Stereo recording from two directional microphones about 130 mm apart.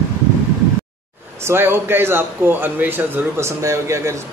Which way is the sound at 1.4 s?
20° right (ahead or behind).